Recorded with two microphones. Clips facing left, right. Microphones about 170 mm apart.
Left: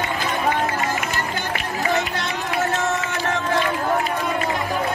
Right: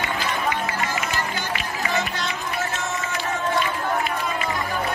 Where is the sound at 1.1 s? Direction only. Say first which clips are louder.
Left 1 dB; 65° left (ahead or behind).